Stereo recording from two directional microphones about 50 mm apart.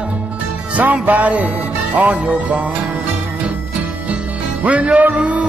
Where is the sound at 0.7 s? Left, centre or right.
Right.